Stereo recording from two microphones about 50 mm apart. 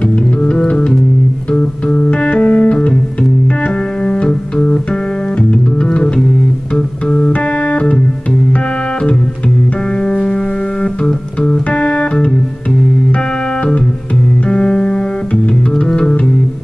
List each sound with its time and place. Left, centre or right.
0.0 s music: left
1.5 s music: left
10.0 s music: centre
14.5 s music: centre
16.0 s music: centre